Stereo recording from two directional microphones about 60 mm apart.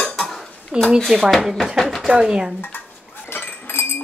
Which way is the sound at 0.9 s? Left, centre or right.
Centre.